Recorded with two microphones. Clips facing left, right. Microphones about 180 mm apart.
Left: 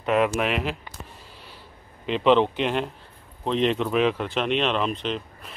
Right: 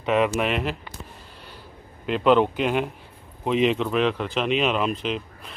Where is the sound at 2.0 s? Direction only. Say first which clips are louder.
Right 1 dB; centre (ahead or behind).